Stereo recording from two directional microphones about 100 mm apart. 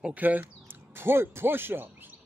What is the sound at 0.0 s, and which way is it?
Speech, 15° right (ahead or behind).